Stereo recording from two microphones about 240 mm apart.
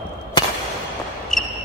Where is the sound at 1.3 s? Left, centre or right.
Centre.